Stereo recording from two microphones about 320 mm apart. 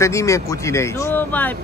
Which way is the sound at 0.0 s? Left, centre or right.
Centre.